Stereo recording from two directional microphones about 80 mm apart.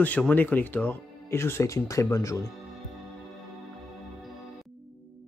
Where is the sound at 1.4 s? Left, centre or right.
Left.